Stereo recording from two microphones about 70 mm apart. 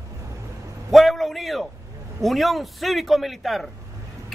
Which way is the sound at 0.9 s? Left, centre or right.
Centre.